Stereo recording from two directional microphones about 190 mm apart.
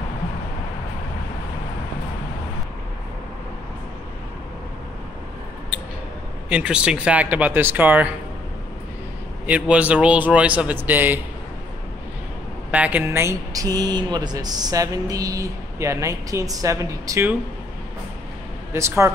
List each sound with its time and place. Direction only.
6.5 s speech: 5° right (ahead or behind)
9.5 s speech: 5° right (ahead or behind)
12.7 s speech: 5° right (ahead or behind)
18.7 s speech: 15° right (ahead or behind)